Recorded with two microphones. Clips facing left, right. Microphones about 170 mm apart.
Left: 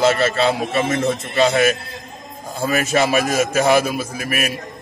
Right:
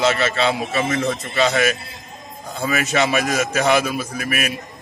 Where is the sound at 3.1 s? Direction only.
45° left (ahead or behind).